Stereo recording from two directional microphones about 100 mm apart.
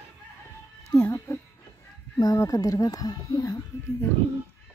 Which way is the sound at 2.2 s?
35° left (ahead or behind).